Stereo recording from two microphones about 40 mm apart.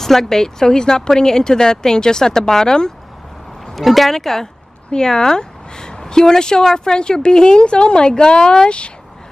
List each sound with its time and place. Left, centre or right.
0.0 s speech: centre
3.7 s speech: centre; by 8.9 s left